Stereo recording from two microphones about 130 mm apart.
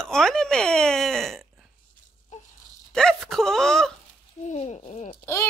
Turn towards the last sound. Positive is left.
turn(degrees=60)  # may be behind; listen again after turning